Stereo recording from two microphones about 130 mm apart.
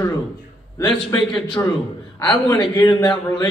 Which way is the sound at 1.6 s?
25° left (ahead or behind).